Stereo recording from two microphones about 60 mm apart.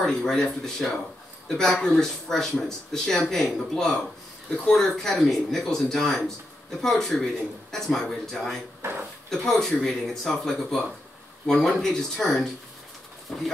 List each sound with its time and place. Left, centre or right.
0.2 s speech: centre
8.8 s speech: right
9.5 s speech: centre